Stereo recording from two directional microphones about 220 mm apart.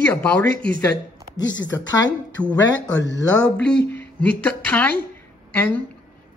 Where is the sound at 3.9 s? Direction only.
10° left (ahead or behind).